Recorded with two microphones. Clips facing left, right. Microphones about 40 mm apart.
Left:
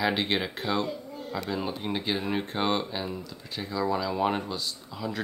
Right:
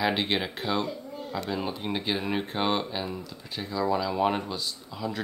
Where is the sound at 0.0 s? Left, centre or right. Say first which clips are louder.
Even; centre.